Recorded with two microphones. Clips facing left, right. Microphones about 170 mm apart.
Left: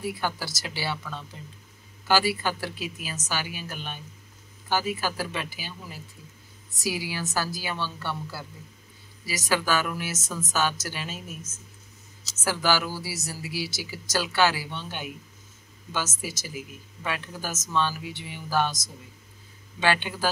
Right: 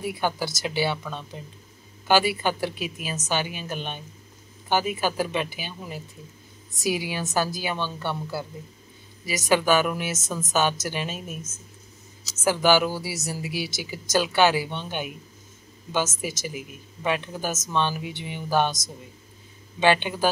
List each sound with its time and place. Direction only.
0.0 s speech: 20° right (ahead or behind)
12.4 s speech: 20° right (ahead or behind)